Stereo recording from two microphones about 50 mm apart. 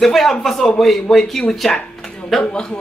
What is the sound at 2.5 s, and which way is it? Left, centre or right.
Speech, centre.